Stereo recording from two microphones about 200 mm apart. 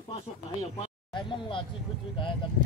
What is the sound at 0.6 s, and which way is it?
Speech, 30° left (ahead or behind).